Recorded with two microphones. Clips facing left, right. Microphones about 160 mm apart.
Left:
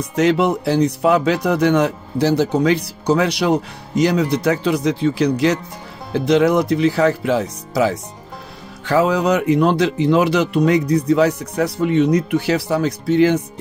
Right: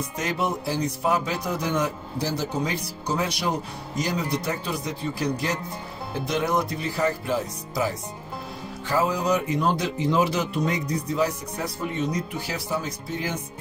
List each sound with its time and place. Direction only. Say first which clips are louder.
0.1 s speech: left 14 dB; 75° left (ahead or behind)